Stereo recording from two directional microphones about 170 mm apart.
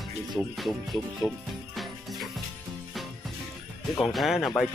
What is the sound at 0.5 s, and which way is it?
Speech, centre (ahead or behind).